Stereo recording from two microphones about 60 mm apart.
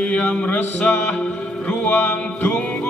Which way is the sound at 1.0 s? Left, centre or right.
Left.